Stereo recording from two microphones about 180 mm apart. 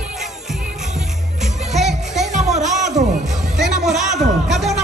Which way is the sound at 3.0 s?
Centre (ahead or behind).